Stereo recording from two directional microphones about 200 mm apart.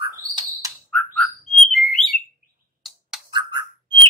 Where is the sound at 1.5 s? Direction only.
Centre (ahead or behind).